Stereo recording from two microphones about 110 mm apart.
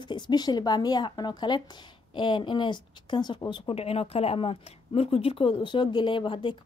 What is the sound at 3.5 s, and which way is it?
A woman's voice, 60° left (ahead or behind).